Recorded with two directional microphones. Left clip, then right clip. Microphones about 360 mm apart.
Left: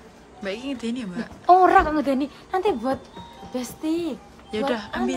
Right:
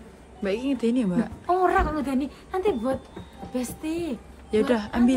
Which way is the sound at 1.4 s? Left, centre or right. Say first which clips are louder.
Left 8 dB; left.